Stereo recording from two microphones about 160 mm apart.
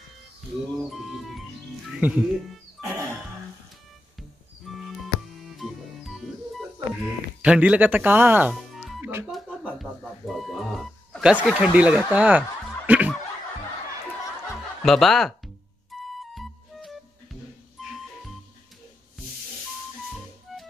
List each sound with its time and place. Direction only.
0.8 s music: centre (ahead or behind)
1.9 s speech: 5° right (ahead or behind)
2.8 s music: 20° right (ahead or behind)
4.6 s music: centre (ahead or behind)
7.4 s speech: 5° right (ahead or behind)
8.5 s music: centre (ahead or behind)
14.8 s speech: centre (ahead or behind)
16.2 s music: centre (ahead or behind)